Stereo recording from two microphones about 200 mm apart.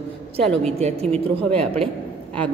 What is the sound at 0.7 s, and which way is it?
Speech, 30° right (ahead or behind).